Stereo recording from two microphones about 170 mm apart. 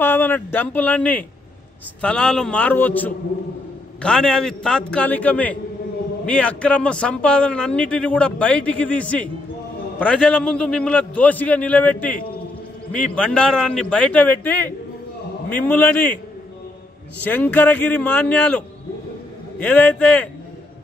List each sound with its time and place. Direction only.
0.0 s a man's voice: 10° left (ahead or behind)
17.2 s a man's voice: 10° left (ahead or behind)
19.6 s a man's voice: 5° left (ahead or behind)